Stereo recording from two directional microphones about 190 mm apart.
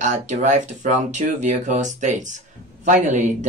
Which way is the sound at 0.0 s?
40° right (ahead or behind).